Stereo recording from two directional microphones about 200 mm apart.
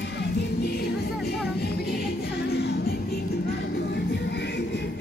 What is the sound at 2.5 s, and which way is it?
Music, 55° left (ahead or behind).